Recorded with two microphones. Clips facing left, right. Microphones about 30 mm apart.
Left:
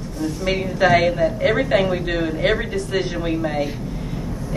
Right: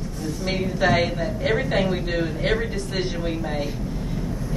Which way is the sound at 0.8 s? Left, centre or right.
Left.